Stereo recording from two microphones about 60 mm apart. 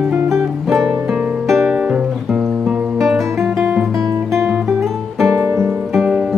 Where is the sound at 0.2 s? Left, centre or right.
Right.